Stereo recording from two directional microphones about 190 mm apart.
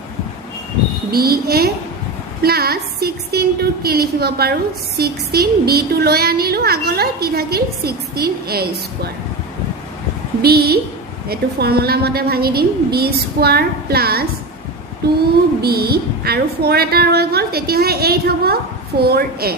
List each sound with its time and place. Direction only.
1.1 s a woman's voice: 55° right (ahead or behind)
10.4 s a woman's voice: 55° right (ahead or behind)
15.6 s a woman's voice: 55° right (ahead or behind)